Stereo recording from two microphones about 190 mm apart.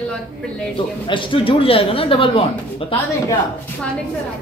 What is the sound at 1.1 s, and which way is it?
A man's voice, 25° left (ahead or behind).